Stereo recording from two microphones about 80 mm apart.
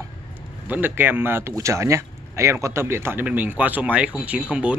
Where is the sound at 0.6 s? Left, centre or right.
Right.